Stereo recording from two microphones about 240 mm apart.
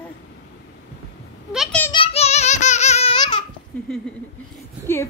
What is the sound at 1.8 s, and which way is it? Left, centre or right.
Child singing, centre.